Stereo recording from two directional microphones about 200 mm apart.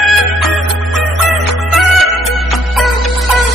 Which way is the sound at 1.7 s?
Centre (ahead or behind).